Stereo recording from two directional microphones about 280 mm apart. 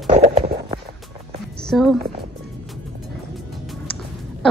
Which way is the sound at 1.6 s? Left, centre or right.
Centre.